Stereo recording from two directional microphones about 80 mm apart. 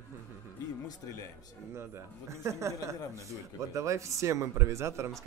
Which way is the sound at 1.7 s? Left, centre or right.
Right.